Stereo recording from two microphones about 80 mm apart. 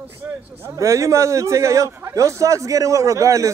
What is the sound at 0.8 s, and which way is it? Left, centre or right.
A man's voice, right.